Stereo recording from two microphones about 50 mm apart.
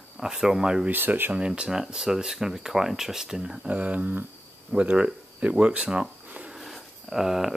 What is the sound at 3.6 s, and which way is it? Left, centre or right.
Speech, right.